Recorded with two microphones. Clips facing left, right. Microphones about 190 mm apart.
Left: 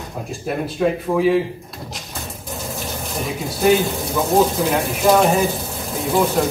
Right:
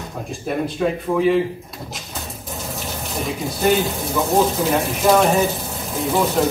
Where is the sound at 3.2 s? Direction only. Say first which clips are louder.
Left 1 dB; centre (ahead or behind).